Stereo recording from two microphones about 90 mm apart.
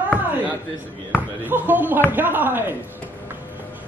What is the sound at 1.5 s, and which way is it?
Speech, 20° right (ahead or behind).